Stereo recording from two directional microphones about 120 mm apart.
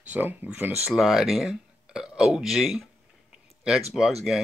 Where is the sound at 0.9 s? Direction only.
5° right (ahead or behind).